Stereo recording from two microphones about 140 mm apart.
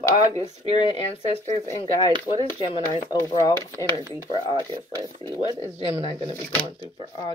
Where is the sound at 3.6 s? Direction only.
20° left (ahead or behind).